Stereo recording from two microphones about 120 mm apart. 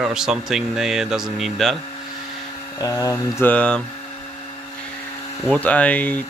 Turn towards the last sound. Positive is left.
turn(degrees=10)  # may be behind; listen again after turning